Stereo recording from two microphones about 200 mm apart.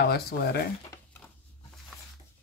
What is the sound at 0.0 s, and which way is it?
Speech, 50° left (ahead or behind).